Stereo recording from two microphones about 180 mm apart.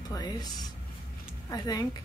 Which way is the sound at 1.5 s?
20° left (ahead or behind).